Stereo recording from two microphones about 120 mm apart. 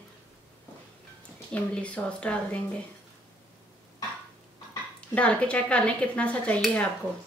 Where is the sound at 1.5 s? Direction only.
10° left (ahead or behind).